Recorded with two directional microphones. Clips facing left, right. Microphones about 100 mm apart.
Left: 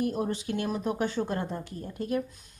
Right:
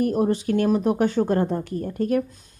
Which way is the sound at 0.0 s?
50° right (ahead or behind).